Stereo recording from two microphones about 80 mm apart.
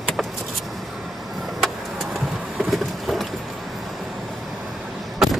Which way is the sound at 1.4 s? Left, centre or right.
Centre.